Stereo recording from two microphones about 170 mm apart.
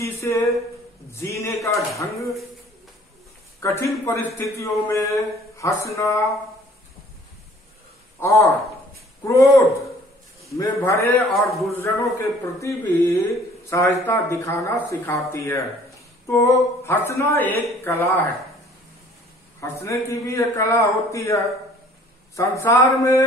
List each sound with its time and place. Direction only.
0.0 s speech: 20° left (ahead or behind)
3.6 s speech: 15° left (ahead or behind)
8.2 s speech: 15° left (ahead or behind)
11.3 s a man's voice: centre (ahead or behind)
11.7 s speech: 15° left (ahead or behind)
19.6 s speech: 15° left (ahead or behind)